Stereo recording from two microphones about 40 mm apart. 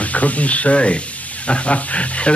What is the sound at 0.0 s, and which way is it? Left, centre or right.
Speech, left.